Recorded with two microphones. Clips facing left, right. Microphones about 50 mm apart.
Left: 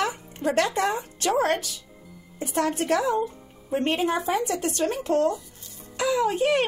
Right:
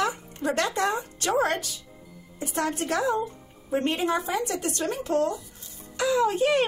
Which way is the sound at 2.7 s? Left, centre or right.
Left.